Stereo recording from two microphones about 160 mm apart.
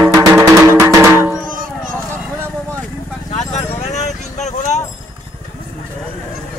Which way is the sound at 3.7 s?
45° left (ahead or behind).